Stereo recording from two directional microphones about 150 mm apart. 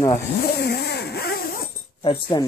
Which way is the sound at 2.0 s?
35° left (ahead or behind).